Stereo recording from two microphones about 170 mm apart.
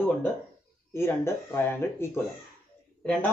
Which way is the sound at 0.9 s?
15° left (ahead or behind).